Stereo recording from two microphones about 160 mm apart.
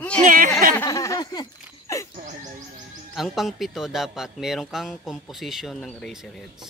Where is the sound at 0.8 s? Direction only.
20° left (ahead or behind).